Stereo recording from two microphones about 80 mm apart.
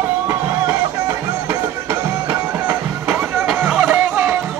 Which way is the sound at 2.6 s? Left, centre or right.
Centre.